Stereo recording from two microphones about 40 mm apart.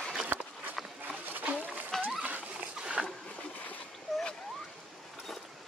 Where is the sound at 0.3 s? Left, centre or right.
Right.